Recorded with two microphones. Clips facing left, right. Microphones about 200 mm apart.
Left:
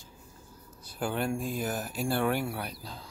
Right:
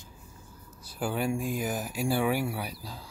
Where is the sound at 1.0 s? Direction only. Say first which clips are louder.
Right 1 dB; 5° right (ahead or behind).